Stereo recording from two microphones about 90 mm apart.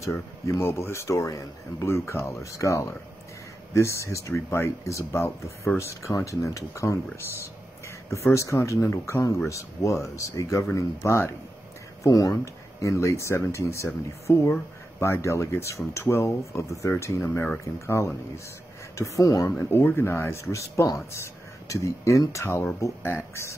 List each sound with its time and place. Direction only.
0.6 s a man's voice: 25° left (ahead or behind); by 12.4 s 45° left (ahead or behind)
12.8 s a man's voice: 35° left (ahead or behind)
17.2 s speech: 20° left (ahead or behind)
17.8 s a man's voice: 30° left (ahead or behind)
19.6 s a man's voice: 25° left (ahead or behind)